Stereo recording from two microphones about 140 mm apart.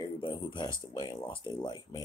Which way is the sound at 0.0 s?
35° left (ahead or behind).